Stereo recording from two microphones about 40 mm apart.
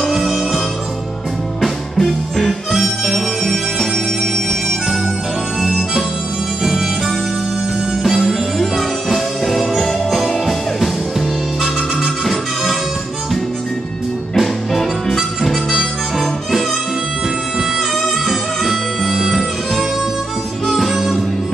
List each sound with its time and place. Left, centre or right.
2.0 s music: centre
2.7 s music: centre
5.6 s harmonica: centre
6.6 s harmonica: centre
8.0 s music: centre
14.3 s harmonica: centre
17.7 s music: centre